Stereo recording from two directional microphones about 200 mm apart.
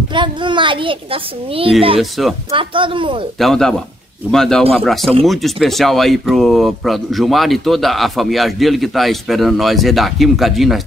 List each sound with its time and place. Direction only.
0.1 s a child's voice: 25° right (ahead or behind)
2.0 s speech: centre (ahead or behind)
2.5 s a child's voice: 25° right (ahead or behind)
3.3 s speech: centre (ahead or behind)